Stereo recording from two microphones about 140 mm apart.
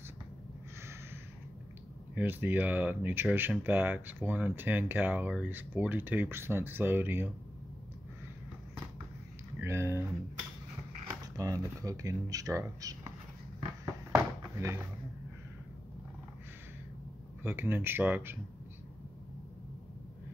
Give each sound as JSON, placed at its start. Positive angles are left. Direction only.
{"t": 2.1, "sound": "speech", "side_deg": -15}
{"t": 9.6, "sound": "speech", "side_deg": -20}
{"t": 11.3, "sound": "speech", "side_deg": -25}
{"t": 14.1, "sound": "a sound", "side_deg": -20}
{"t": 17.4, "sound": "speech", "side_deg": -15}